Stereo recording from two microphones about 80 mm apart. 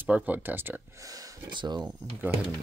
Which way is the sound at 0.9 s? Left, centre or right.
Right.